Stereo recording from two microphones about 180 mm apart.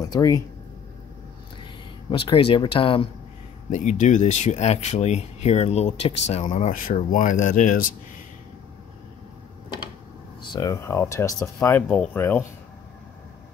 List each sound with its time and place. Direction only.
0.1 s speech: 20° left (ahead or behind)
1.6 s speech: 25° left (ahead or behind)
3.7 s speech: 40° left (ahead or behind)
10.4 s speech: 20° left (ahead or behind)